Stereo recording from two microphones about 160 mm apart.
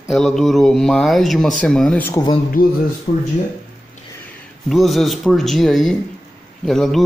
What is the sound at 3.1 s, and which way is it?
Speech, 45° left (ahead or behind).